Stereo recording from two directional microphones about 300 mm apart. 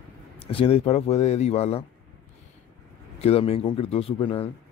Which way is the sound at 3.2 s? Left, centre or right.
Centre.